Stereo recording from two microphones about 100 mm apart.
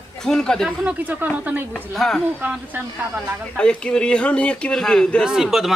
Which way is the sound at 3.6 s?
10° left (ahead or behind).